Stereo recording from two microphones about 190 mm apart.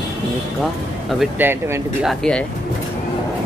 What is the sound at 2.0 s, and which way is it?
Speech, centre (ahead or behind).